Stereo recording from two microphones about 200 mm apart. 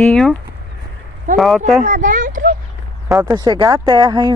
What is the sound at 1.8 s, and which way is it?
Speech, 40° right (ahead or behind).